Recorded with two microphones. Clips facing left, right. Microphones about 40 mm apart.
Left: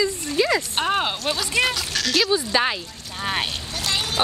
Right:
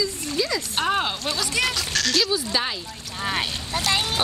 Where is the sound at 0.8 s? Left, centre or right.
Centre.